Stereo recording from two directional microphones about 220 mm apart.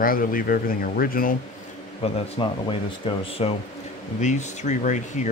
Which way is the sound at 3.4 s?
30° left (ahead or behind).